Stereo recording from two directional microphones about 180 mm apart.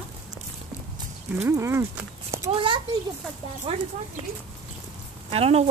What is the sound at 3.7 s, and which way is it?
Speech, 30° right (ahead or behind).